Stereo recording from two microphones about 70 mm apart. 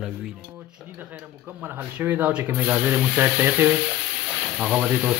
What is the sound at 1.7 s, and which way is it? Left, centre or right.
Speech, right.